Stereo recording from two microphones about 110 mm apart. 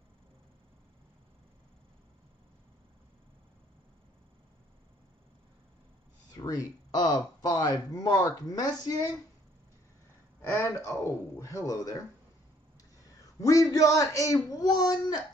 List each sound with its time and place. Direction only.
6.3 s speech: 35° left (ahead or behind)
10.4 s speech: 25° left (ahead or behind)
13.4 s a man's voice: 30° left (ahead or behind)